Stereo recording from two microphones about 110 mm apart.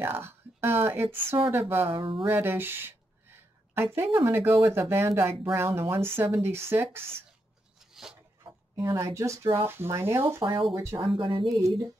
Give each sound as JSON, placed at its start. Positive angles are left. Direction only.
{"t": 0.0, "sound": "speech", "side_deg": -20}
{"t": 1.9, "sound": "speech", "side_deg": -55}
{"t": 2.2, "sound": "speech", "side_deg": -20}
{"t": 8.7, "sound": "speech", "side_deg": -25}
{"t": 10.4, "sound": "speech", "side_deg": -40}